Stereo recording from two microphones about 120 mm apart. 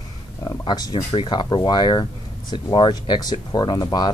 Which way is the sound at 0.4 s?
35° left (ahead or behind).